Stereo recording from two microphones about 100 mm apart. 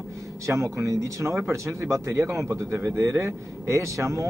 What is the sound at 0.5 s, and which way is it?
Speech, 30° right (ahead or behind).